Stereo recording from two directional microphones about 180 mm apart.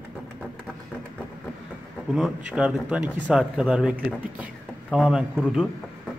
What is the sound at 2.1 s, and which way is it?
Speech, 5° right (ahead or behind).